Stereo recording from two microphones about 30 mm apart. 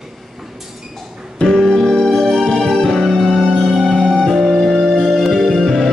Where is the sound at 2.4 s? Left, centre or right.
Centre.